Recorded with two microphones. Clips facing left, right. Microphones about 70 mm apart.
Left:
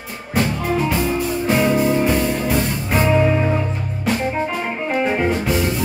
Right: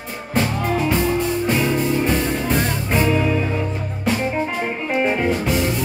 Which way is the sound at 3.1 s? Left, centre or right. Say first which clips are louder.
Left 3 dB; centre.